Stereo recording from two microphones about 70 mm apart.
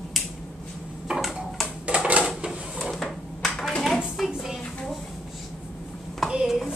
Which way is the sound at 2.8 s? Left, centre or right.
Centre.